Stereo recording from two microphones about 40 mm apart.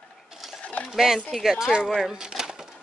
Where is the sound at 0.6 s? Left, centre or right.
Left.